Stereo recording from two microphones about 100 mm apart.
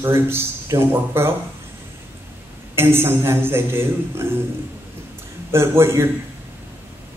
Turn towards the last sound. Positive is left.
turn(degrees=-25)  # may be behind; listen again after turning